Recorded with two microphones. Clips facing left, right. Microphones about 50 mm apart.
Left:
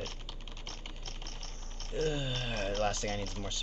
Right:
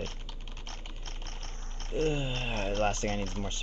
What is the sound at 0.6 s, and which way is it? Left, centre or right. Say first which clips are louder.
Typing: right 1 dB; right.